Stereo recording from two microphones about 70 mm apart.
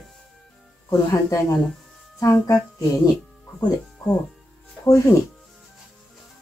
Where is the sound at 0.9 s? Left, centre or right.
Left.